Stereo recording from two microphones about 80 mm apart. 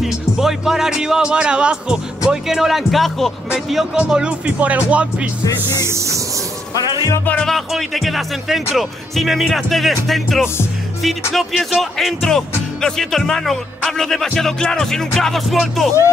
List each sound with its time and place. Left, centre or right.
0.0 s speech: centre
4.1 s speech: centre
5.9 s speech: right
7.4 s speech: centre